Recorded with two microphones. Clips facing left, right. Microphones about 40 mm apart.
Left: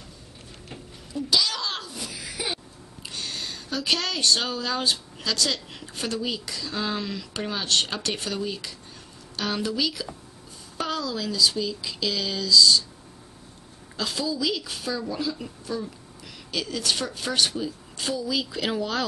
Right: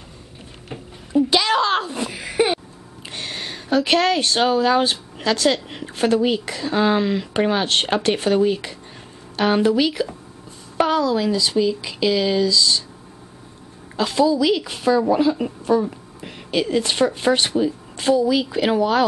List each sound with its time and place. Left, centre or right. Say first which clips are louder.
0.7 s a sound: right 8 dB; right
3.1 s speech: right 4 dB; right
13.9 s speech: right 11 dB; right